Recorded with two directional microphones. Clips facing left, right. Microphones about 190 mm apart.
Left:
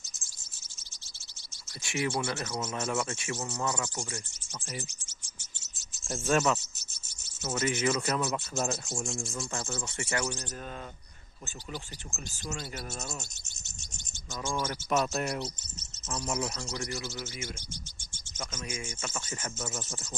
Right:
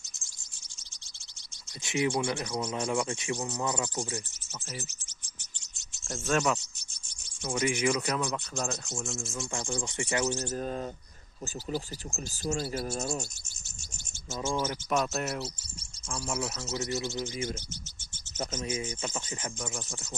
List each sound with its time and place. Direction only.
1.8 s speech: 20° right (ahead or behind)
5.6 s a sound: centre (ahead or behind)
6.3 s speech: centre (ahead or behind)
7.5 s speech: 15° right (ahead or behind)
8.0 s speech: 5° left (ahead or behind)
9.5 s speech: 15° right (ahead or behind)
10.5 s speech: 35° right (ahead or behind)
14.5 s speech: 10° right (ahead or behind)
14.9 s speech: centre (ahead or behind)
17.0 s speech: 20° right (ahead or behind)
19.0 s speech: 15° right (ahead or behind)
19.6 s speech: 5° left (ahead or behind)